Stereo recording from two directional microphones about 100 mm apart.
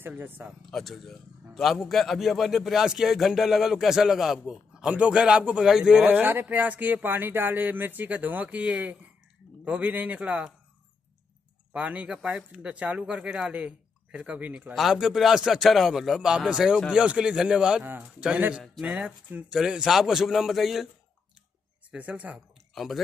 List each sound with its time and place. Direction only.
0.0 s speech: 20° right (ahead or behind)
0.7 s a man's voice: 5° left (ahead or behind); by 10.5 s 15° right (ahead or behind)
11.7 s speech: 15° right (ahead or behind)
14.7 s a man's voice: centre (ahead or behind)
21.9 s speech: 15° right (ahead or behind)